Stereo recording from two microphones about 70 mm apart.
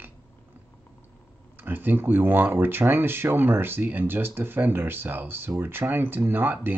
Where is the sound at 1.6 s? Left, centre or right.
Right.